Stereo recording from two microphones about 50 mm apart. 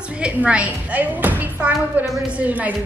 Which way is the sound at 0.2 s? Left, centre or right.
Right.